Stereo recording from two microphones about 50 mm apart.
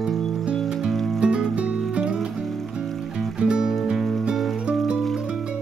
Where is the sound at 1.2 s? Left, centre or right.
Centre.